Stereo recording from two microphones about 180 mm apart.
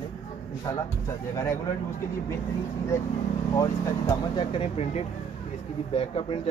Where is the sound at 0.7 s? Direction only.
20° left (ahead or behind).